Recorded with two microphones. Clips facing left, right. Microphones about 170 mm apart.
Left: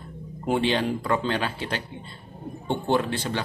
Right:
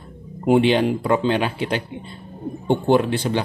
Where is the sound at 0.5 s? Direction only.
20° right (ahead or behind).